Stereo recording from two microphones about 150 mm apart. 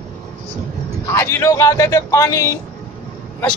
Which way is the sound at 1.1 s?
15° left (ahead or behind).